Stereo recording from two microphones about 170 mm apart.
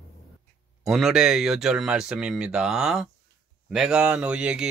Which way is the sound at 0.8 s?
Centre (ahead or behind).